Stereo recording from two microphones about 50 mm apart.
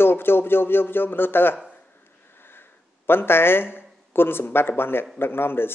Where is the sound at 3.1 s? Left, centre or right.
Left.